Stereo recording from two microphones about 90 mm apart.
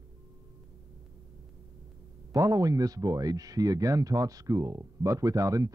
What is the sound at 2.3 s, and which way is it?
Speech, 40° right (ahead or behind).